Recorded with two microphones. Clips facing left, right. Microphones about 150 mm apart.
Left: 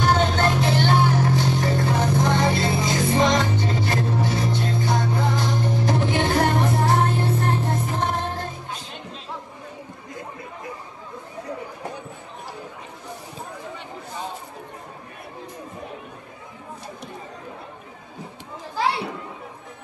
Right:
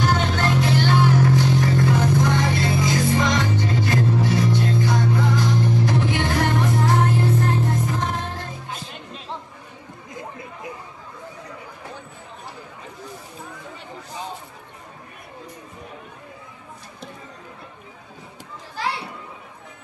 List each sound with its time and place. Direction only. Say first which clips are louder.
0.1 s music: left 1 dB; 30° left (ahead or behind)